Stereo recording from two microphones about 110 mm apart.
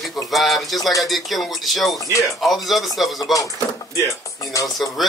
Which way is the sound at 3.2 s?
30° left (ahead or behind).